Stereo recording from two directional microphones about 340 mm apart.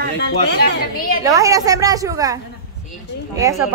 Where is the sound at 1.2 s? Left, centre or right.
Centre.